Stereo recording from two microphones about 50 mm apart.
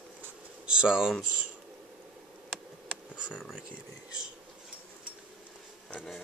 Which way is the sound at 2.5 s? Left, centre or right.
Centre.